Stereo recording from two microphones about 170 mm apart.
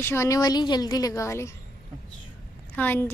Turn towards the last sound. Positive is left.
turn(degrees=10)  # may be behind; listen again after turning